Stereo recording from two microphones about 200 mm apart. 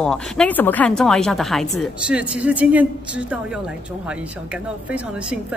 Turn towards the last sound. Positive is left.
turn(degrees=-5)  # may be behind; listen again after turning